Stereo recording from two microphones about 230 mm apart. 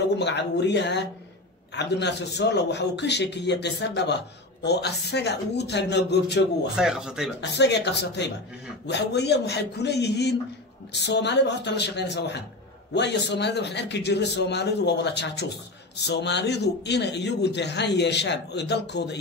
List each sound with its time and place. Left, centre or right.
0.2 s a man's voice: left
6.7 s speech: centre
7.5 s a man's voice: left